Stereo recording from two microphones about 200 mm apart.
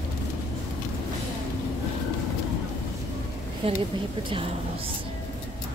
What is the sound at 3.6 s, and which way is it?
Speech, 30° right (ahead or behind).